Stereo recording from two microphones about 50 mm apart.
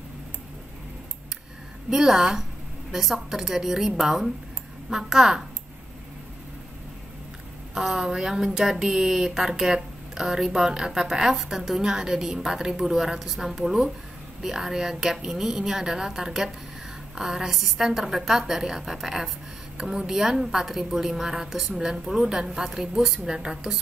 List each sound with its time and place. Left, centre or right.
1.9 s speech: centre
7.7 s a woman's voice: centre